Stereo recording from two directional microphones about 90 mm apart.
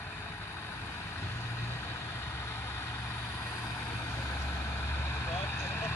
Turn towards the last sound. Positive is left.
turn(degrees=20)  # may be behind; listen again after turning